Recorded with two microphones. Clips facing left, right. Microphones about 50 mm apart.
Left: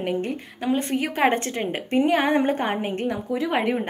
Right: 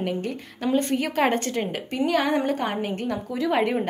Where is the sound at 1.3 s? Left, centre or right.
Left.